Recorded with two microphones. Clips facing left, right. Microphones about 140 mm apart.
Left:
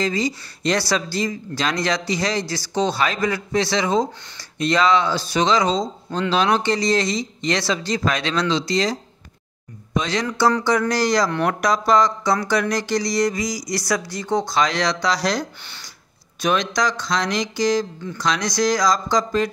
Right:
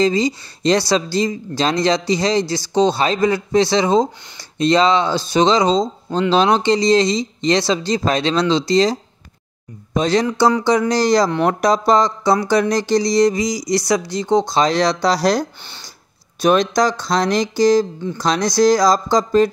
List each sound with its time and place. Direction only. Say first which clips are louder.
0.0 s speech: right 6 dB; 25° right (ahead or behind)
9.9 s speech: right 6 dB; 35° right (ahead or behind)
10.2 s speech: right 4 dB; 25° right (ahead or behind)